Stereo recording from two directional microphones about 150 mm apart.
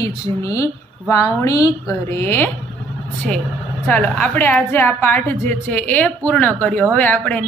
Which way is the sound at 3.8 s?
10° left (ahead or behind).